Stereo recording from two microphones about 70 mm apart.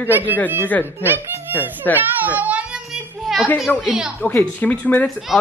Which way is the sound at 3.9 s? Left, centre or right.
Centre.